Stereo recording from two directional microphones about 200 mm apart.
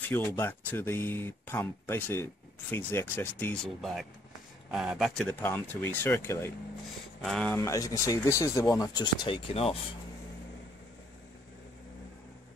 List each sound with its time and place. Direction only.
0.1 s speech: 10° left (ahead or behind); by 9.8 s 30° left (ahead or behind)